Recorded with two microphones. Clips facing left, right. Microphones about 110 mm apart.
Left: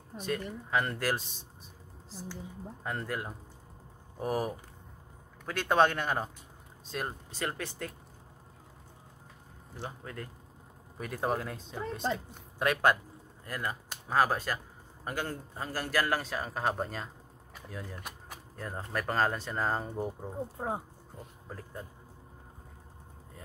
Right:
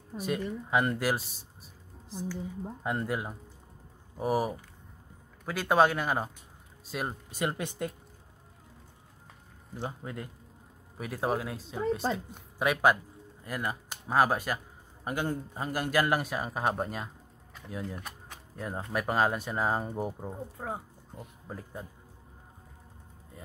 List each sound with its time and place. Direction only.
0.2 s speech: 15° right (ahead or behind)
2.8 s speech: 15° right (ahead or behind)
9.8 s a man's voice: 15° right (ahead or behind)
20.5 s speech: 25° left (ahead or behind)
21.5 s speech: 15° right (ahead or behind)